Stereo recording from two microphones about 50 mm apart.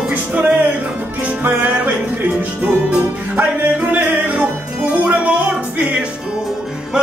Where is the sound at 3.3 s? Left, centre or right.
Right.